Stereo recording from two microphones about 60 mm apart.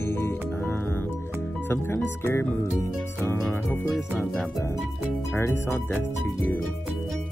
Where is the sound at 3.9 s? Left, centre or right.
Centre.